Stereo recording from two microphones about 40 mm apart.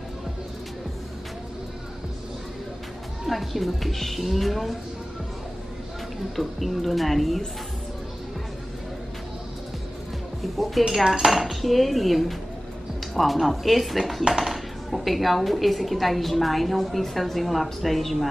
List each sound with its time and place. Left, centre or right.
3.3 s speech: centre
6.3 s speech: centre
10.4 s speech: centre